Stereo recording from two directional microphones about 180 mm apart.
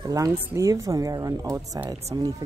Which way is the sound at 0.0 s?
20° right (ahead or behind).